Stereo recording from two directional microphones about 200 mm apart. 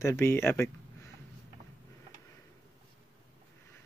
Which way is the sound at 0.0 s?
10° left (ahead or behind).